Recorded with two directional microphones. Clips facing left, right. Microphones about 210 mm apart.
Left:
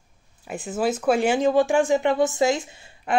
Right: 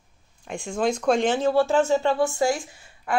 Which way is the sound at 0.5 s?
5° left (ahead or behind).